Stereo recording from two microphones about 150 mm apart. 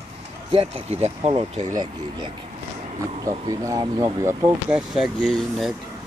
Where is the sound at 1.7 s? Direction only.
30° right (ahead or behind).